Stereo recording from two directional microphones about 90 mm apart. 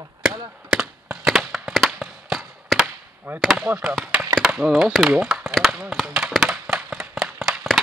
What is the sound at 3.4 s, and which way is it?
Speech, 5° right (ahead or behind).